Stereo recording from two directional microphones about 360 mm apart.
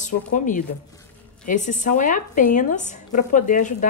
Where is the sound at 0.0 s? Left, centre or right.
Left.